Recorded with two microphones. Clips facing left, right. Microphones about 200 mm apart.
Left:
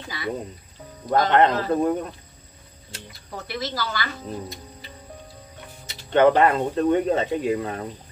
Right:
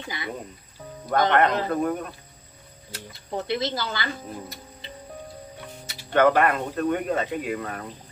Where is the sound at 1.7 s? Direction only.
25° left (ahead or behind).